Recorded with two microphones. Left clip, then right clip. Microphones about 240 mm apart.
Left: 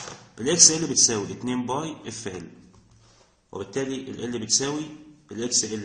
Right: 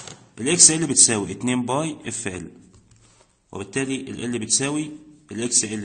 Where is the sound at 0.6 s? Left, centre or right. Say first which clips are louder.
Even; right.